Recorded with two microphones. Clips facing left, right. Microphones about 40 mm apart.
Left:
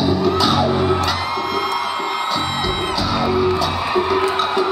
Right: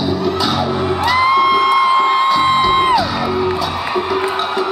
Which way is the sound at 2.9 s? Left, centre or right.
Centre.